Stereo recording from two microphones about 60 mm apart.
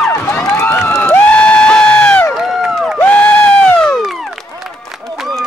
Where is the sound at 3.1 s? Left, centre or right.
Left.